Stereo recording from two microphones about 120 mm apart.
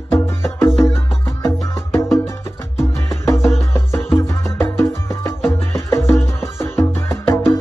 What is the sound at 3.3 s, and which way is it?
Music, 20° left (ahead or behind).